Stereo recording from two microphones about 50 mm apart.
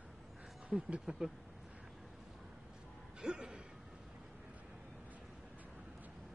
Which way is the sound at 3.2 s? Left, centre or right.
Centre.